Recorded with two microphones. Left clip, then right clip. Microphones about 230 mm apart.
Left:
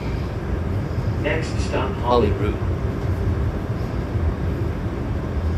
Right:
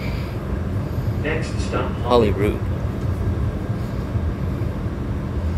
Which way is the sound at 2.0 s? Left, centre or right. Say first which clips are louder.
Right 3 dB; right.